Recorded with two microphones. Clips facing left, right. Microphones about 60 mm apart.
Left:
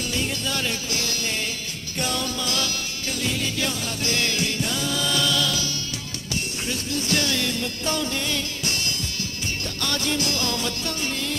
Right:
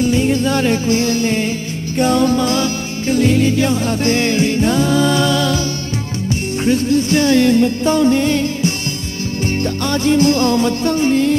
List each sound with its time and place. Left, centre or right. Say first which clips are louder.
0.0 s music: right 13 dB; right
6.6 s music: right 18 dB; right